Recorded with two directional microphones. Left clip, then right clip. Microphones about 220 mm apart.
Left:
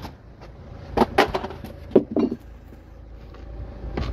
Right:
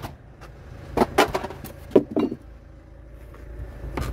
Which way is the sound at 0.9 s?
10° right (ahead or behind).